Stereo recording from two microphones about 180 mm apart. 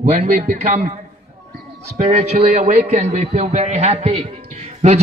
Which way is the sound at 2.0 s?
40° right (ahead or behind).